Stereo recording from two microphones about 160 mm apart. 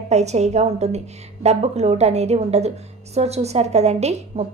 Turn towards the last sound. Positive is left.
turn(degrees=-45)  # may be behind; listen again after turning